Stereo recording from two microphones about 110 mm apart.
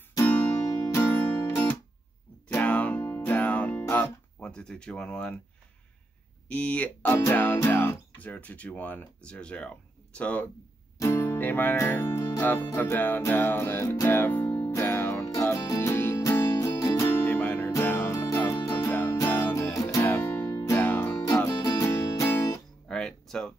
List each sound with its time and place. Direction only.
0.2 s music: 20° left (ahead or behind)
6.5 s speech: 15° left (ahead or behind)
11.0 s music: 20° left (ahead or behind)
17.1 s music: 15° left (ahead or behind)
20.0 s music: 15° left (ahead or behind)
21.5 s music: 35° left (ahead or behind)
22.8 s music: 5° left (ahead or behind)